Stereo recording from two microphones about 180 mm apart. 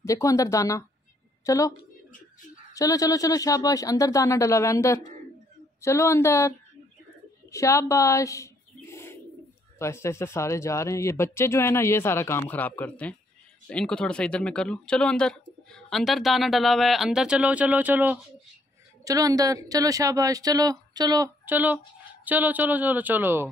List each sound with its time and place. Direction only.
0.0 s a woman's voice: 15° left (ahead or behind)
2.7 s speech: 20° left (ahead or behind)
7.5 s bird: 15° left (ahead or behind)
9.8 s speech: 15° left (ahead or behind); by 18.2 s 10° right (ahead or behind)
19.0 s a woman's voice: 20° right (ahead or behind)
21.5 s speech: 10° right (ahead or behind)